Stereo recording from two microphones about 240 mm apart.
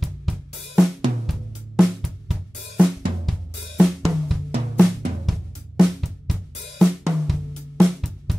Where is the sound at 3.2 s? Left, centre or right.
Centre.